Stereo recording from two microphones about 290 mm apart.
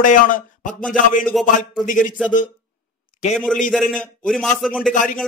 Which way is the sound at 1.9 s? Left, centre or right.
Left.